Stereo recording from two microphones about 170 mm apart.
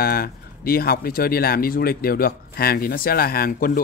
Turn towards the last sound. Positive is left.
turn(degrees=60)  # may be behind; listen again after turning